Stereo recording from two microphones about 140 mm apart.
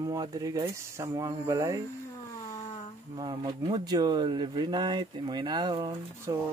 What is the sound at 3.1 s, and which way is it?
Speech, 35° right (ahead or behind).